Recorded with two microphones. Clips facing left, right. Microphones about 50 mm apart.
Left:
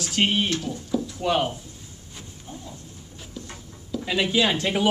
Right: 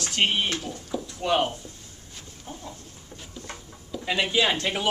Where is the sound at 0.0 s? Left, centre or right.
Centre.